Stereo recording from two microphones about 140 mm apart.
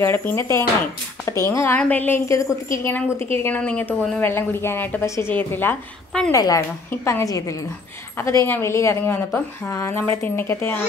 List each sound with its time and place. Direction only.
0.0 s a woman's voice: 15° left (ahead or behind)
6.3 s a woman's voice: 25° left (ahead or behind)